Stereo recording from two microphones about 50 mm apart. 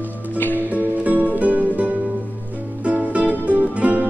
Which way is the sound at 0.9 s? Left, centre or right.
Right.